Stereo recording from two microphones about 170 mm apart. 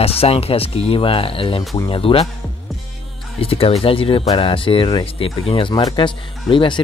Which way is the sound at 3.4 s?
35° left (ahead or behind).